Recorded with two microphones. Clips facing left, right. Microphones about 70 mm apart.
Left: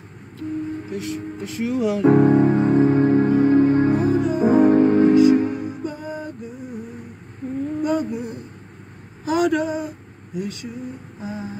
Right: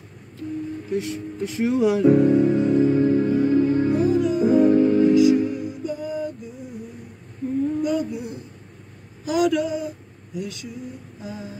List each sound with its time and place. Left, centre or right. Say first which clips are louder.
0.4 s vehicle: left 2 dB; left
0.9 s music: right 1 dB; right
2.0 s music: left 3 dB; left
7.8 s a sound: left 2 dB; left